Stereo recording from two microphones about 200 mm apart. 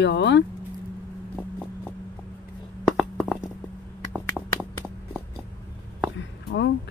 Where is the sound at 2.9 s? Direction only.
Centre (ahead or behind).